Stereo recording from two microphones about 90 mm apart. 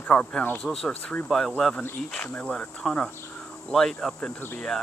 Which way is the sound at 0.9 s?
15° left (ahead or behind).